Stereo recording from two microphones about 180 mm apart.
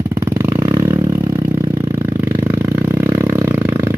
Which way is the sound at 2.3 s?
15° right (ahead or behind).